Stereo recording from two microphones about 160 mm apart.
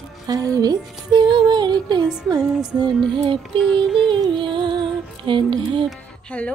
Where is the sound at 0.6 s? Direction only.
25° right (ahead or behind).